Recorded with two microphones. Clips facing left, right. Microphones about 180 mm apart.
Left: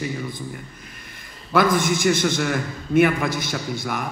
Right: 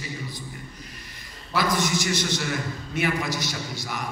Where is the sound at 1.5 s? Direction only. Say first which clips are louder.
Left 6 dB; 55° left (ahead or behind).